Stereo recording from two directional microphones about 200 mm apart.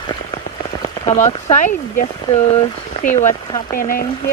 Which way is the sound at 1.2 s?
35° left (ahead or behind).